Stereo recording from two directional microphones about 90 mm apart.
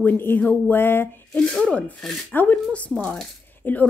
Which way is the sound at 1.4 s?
10° left (ahead or behind).